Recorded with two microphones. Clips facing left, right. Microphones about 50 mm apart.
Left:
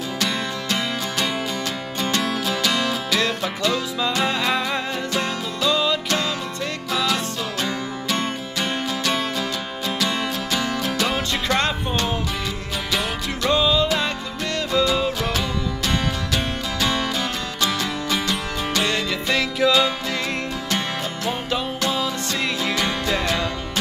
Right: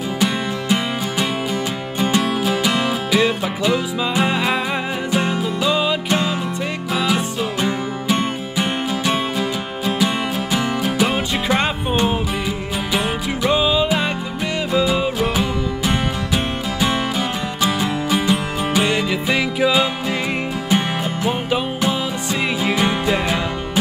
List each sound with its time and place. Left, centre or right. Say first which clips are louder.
2.0 s music: right 5 dB; centre